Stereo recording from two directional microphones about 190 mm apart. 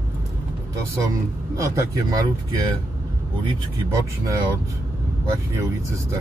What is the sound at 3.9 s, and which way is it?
Speech, 20° right (ahead or behind).